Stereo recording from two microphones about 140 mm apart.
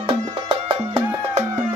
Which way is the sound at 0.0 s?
40° right (ahead or behind).